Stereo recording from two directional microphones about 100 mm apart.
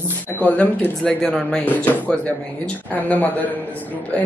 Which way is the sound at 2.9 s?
15° left (ahead or behind).